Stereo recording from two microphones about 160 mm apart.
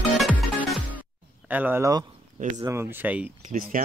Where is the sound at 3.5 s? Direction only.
50° right (ahead or behind).